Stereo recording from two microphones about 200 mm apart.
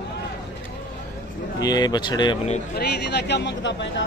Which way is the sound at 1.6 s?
20° left (ahead or behind).